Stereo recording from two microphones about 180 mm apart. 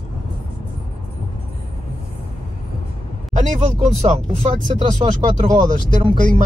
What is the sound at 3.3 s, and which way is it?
Speech, 45° right (ahead or behind).